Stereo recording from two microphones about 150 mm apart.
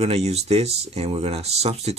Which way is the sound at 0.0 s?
45° right (ahead or behind).